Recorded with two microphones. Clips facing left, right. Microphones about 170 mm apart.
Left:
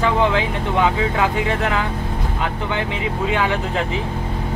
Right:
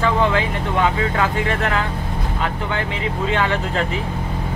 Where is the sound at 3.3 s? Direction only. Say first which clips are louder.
Right 1 dB; 15° left (ahead or behind).